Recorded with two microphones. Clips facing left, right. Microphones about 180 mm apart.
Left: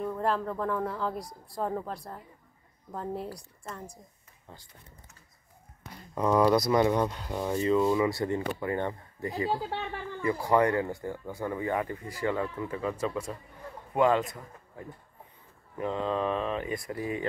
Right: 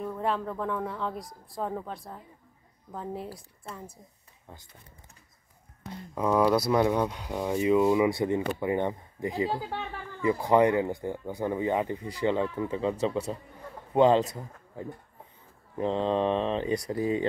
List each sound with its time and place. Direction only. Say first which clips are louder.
0.0 s speech: left 1 dB; centre (ahead or behind)
6.1 s speech: even; 5° right (ahead or behind); by 12.9 s 20° right (ahead or behind)
13.9 s speech: right 4 dB; 30° right (ahead or behind)